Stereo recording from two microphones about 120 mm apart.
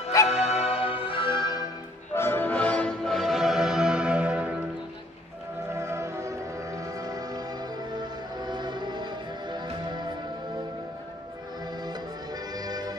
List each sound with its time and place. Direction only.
0.3 s music: 60° left (ahead or behind); by 1.6 s 40° left (ahead or behind)
2.1 s music: 15° left (ahead or behind); by 4.6 s 10° right (ahead or behind)
5.8 s music: 25° right (ahead or behind)
12.5 s music: 35° right (ahead or behind)